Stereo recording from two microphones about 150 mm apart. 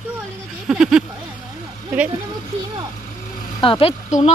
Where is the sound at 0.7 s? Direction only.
5° right (ahead or behind).